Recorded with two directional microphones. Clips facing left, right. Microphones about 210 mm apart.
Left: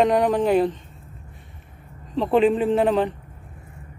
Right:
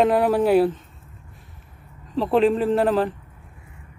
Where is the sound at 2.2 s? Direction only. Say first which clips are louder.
Even; centre (ahead or behind).